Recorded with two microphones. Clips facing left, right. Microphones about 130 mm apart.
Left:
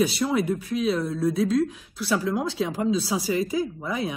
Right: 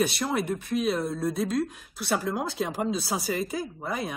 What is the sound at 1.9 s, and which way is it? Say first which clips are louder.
Speech: left 2 dB; 60° right (ahead or behind).